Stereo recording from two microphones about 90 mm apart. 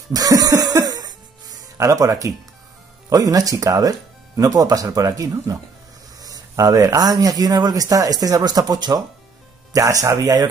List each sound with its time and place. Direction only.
0.1 s music: 45° right (ahead or behind)
3.1 s speech: 40° right (ahead or behind)